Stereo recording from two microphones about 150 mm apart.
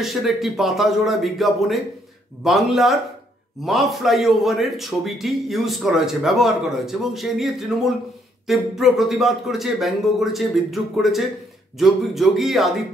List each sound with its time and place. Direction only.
0.0 s a man's voice: centre (ahead or behind)